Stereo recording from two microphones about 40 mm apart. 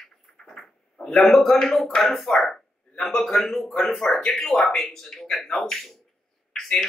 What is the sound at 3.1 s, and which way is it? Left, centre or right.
Speech, centre.